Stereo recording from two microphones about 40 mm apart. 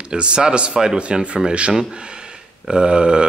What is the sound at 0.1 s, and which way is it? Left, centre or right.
Speech, right.